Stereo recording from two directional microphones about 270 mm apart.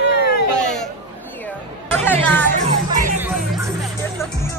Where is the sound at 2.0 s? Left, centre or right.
Centre.